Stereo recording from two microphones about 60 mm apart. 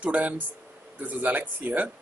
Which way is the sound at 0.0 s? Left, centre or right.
Right.